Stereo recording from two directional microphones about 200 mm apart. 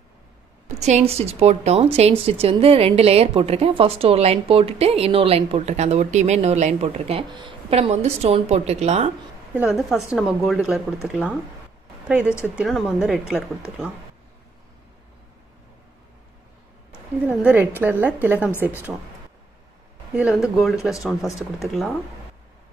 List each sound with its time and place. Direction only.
0.7 s a woman's voice: 35° right (ahead or behind)
9.6 s speech: 5° right (ahead or behind)
17.3 s a woman's voice: 10° right (ahead or behind)
20.2 s speech: 5° right (ahead or behind)